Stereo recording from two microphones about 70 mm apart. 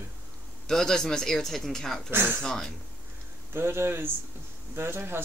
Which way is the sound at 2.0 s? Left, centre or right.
Right.